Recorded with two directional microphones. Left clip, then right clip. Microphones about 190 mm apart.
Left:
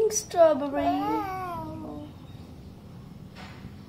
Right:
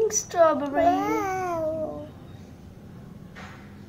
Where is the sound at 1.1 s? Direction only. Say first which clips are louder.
Right 4 dB; 60° right (ahead or behind).